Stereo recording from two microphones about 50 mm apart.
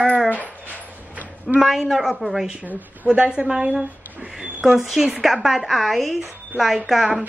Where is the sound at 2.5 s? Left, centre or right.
Right.